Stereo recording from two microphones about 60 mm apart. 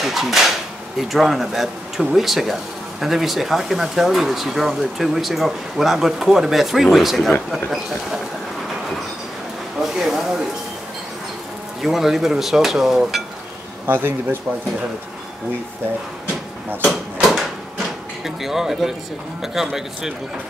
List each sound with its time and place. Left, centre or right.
0.0 s speech: centre
9.8 s a man's voice: centre
11.8 s speech: centre
13.8 s speech: right
16.8 s drawer open or close: centre
18.2 s a man's voice: centre